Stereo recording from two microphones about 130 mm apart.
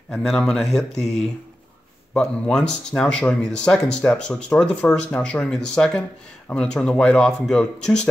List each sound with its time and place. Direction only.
0.2 s speech: 5° left (ahead or behind)
0.9 s speech: 55° left (ahead or behind)
2.1 s speech: 5° left (ahead or behind)